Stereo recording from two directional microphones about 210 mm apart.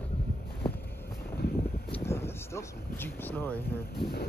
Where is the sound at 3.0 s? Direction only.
10° left (ahead or behind).